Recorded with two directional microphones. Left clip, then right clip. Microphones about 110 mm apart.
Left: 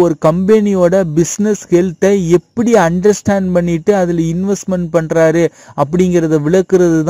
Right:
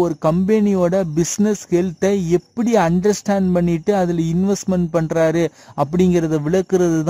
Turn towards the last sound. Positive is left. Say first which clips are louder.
# left 6 dB
turn(degrees=25)  # may be behind; listen again after turning